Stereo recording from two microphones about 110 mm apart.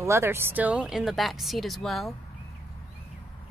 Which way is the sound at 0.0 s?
25° right (ahead or behind).